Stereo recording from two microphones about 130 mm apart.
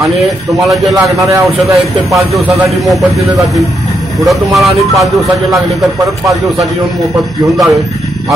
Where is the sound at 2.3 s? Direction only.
Centre (ahead or behind).